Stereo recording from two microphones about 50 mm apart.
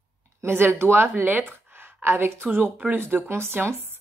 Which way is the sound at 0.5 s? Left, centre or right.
Right.